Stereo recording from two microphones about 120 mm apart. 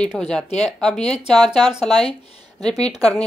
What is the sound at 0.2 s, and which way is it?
Speech, 5° left (ahead or behind).